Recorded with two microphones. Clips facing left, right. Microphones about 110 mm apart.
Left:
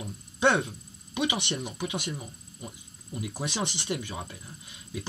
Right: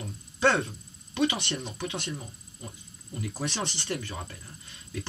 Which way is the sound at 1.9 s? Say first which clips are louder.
Left 1 dB; 20° left (ahead or behind).